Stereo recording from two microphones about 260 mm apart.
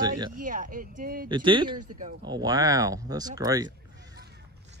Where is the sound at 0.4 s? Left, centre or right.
Right.